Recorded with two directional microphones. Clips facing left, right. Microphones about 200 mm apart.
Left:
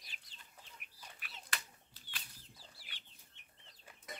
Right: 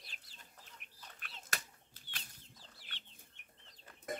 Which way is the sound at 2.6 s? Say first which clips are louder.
Right 1 dB; 10° left (ahead or behind).